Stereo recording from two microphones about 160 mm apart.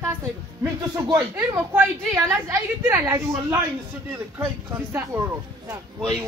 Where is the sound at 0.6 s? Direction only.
20° right (ahead or behind).